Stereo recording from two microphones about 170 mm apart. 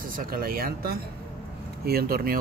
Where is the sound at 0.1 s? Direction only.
60° right (ahead or behind).